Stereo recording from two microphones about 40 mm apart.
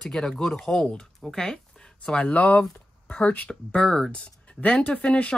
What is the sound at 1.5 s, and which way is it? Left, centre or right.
Speech, left.